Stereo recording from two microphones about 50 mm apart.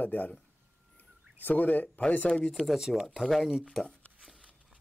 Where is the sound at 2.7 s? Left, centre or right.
Centre.